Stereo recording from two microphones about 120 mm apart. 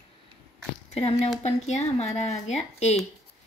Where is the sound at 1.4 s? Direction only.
70° left (ahead or behind).